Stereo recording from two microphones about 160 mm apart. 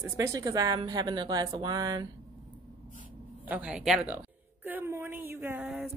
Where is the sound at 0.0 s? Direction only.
20° right (ahead or behind).